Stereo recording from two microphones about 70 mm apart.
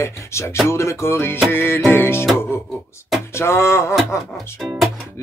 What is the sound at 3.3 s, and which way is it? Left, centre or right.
Speech, left.